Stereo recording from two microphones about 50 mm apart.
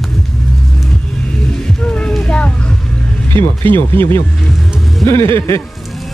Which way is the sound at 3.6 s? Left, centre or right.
Left.